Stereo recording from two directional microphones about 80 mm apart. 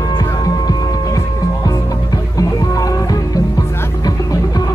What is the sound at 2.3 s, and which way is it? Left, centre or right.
Music, left.